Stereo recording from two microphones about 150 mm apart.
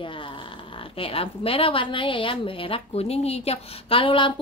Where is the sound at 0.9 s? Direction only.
40° left (ahead or behind).